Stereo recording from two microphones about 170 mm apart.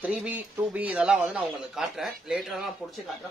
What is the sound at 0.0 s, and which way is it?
A man's voice, 10° right (ahead or behind).